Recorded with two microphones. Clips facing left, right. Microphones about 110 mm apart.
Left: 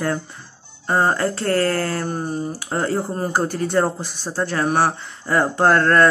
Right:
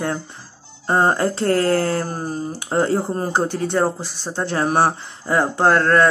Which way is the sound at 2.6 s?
25° right (ahead or behind).